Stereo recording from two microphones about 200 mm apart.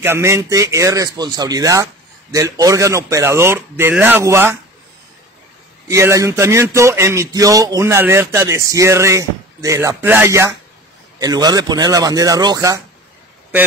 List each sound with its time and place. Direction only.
0.0 s speech: 10° right (ahead or behind)
5.9 s a man's voice: 15° right (ahead or behind)